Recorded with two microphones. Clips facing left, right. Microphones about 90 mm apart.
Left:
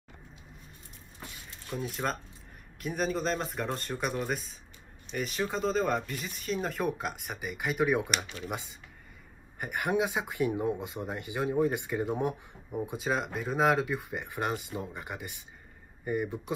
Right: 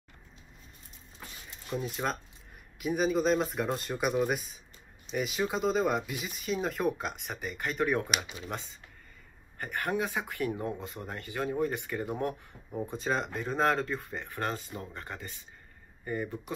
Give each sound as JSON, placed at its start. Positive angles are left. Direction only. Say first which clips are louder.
{"t": 1.7, "sound": "speech", "louder": "even", "side_deg": 0}
{"t": 9.6, "sound": "speech", "louder": "left 3 dB", "side_deg": 15}